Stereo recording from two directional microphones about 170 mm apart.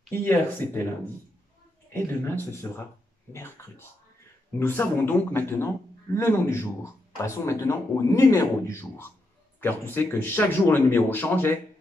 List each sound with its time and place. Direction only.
0.1 s speech: 10° left (ahead or behind)
2.0 s speech: 15° left (ahead or behind)